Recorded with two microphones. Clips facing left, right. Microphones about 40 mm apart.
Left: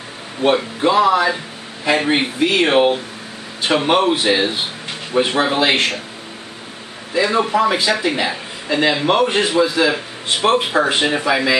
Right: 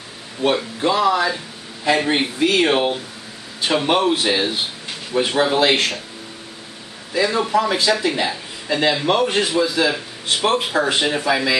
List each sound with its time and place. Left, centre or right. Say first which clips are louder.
0.4 s speech: left 3 dB; centre
7.2 s speech: left 2 dB; centre